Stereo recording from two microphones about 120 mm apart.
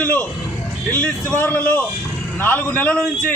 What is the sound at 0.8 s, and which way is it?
A man's voice, 15° left (ahead or behind).